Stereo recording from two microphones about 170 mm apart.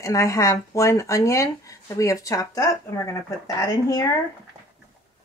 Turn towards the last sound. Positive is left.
turn(degrees=20)  # may be behind; listen again after turning